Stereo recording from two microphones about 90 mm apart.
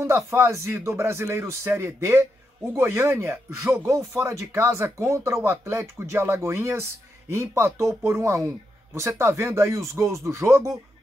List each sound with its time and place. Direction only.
0.0 s speech: 30° right (ahead or behind)